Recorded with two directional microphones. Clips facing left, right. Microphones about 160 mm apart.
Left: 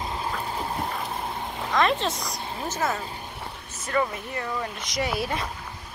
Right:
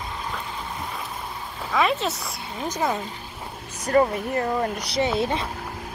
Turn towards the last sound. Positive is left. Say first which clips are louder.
# right 5 dB
turn(degrees=-25)  # may be behind; listen again after turning